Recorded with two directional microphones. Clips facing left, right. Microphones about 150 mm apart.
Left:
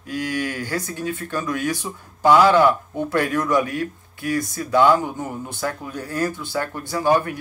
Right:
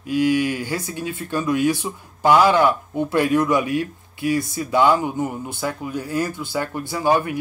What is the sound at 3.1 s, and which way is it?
Speech, 20° right (ahead or behind).